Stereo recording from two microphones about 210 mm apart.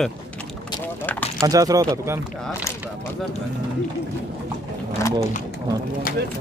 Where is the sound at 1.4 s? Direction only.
15° right (ahead or behind).